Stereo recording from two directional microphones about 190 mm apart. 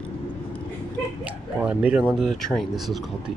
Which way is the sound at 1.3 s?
5° right (ahead or behind).